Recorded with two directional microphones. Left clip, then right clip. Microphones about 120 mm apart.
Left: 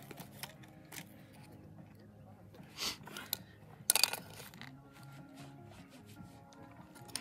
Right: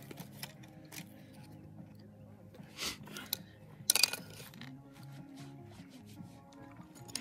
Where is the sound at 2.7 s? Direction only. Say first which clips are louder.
Even; 25° left (ahead or behind).